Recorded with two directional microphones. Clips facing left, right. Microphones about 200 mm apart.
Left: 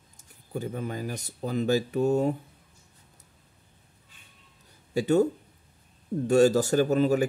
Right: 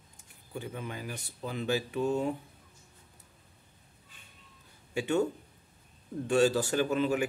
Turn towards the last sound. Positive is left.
turn(degrees=40)  # may be behind; listen again after turning